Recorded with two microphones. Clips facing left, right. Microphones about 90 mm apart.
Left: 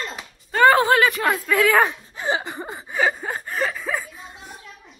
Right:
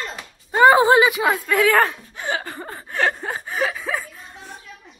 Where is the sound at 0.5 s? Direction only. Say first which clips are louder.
Right 2 dB; 20° right (ahead or behind).